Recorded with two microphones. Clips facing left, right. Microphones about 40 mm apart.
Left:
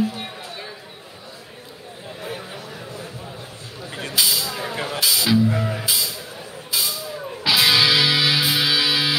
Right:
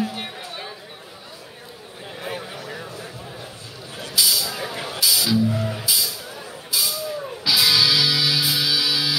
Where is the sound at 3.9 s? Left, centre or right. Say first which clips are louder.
Even; left.